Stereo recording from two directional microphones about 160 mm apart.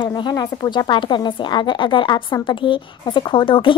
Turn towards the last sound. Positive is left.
turn(degrees=30)  # may be behind; listen again after turning